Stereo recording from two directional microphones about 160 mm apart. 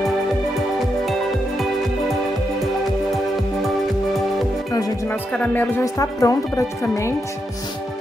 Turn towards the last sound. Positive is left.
turn(degrees=20)  # may be behind; listen again after turning